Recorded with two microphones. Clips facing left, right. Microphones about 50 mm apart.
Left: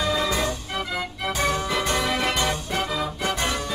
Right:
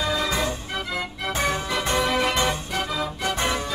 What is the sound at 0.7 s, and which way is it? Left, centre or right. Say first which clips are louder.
Music: even; centre.